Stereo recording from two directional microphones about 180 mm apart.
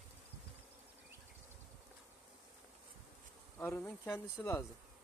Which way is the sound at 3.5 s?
15° left (ahead or behind).